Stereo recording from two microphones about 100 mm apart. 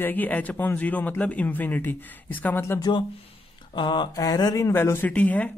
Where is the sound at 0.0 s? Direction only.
15° left (ahead or behind).